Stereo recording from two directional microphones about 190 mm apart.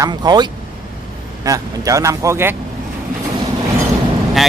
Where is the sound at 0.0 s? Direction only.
20° right (ahead or behind).